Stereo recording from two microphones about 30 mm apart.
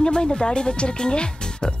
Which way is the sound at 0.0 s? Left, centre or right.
Left.